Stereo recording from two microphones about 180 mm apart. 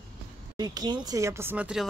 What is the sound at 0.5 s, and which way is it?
Speech, 20° right (ahead or behind).